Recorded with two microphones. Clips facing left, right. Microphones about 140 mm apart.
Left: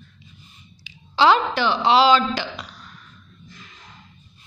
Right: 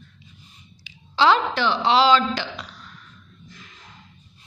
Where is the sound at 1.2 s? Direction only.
10° left (ahead or behind).